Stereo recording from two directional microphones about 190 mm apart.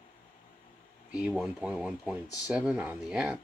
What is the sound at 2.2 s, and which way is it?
Speech, 20° left (ahead or behind).